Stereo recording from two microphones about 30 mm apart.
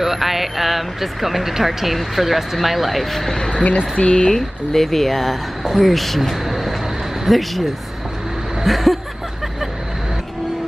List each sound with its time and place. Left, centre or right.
0.0 s speech: centre
4.0 s speech: left
4.4 s speech: centre
8.6 s speech: centre